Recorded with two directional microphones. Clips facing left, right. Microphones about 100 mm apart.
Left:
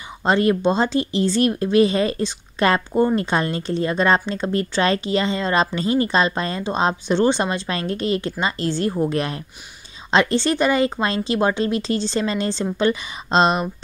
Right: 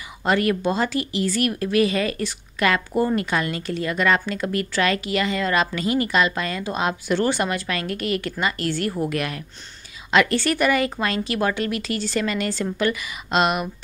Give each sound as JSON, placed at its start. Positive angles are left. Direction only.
{"t": 0.2, "sound": "speech", "side_deg": 25}